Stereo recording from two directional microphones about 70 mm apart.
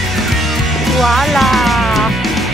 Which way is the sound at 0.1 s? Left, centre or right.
Centre.